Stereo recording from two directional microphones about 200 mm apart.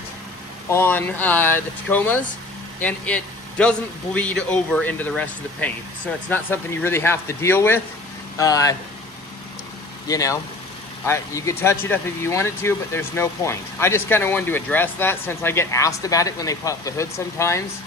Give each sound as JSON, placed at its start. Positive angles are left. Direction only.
{"t": 0.7, "sound": "speech", "side_deg": 10}
{"t": 10.0, "sound": "speech", "side_deg": 15}